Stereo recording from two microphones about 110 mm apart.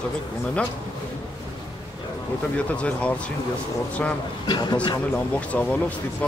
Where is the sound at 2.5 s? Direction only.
10° left (ahead or behind).